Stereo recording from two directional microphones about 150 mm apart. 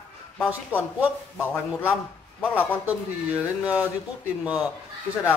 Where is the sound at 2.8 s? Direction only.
10° right (ahead or behind).